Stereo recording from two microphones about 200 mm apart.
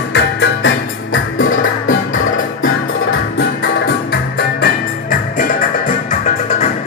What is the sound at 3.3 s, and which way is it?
Music, 55° left (ahead or behind).